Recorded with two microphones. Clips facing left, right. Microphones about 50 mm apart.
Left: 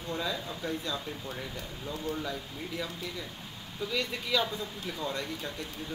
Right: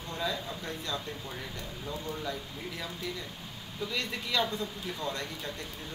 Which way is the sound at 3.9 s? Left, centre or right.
Centre.